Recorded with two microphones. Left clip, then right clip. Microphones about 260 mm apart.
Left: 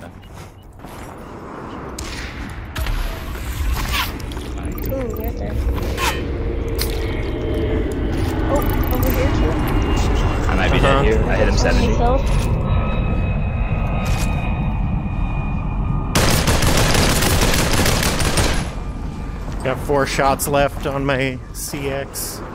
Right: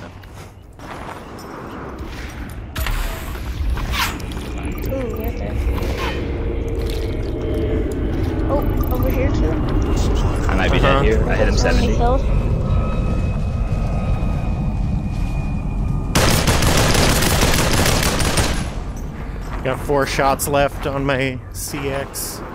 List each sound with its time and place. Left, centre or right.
4.8 s boat: centre
6.2 s squish: centre
7.2 s a sound: centre
7.5 s vehicle: centre; by 8.9 s left
9.3 s a sound: centre
12.3 s vehicle: left
13.7 s a sound: left
16.1 s fusillade: centre
19.6 s speech: centre